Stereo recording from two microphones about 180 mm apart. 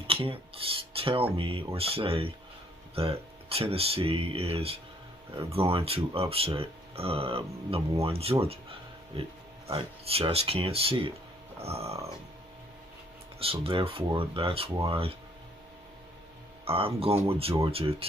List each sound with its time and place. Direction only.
0.0 s a sound: 30° right (ahead or behind)
0.9 s music: 30° right (ahead or behind)
1.3 s speech: 30° right (ahead or behind)
13.4 s speech: 30° right (ahead or behind)
16.6 s speech: 30° right (ahead or behind)